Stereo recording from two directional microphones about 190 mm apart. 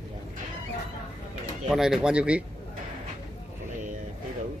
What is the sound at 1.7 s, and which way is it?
Speech, 5° right (ahead or behind).